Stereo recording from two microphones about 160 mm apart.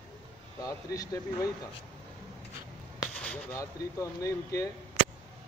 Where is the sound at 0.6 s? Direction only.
20° left (ahead or behind).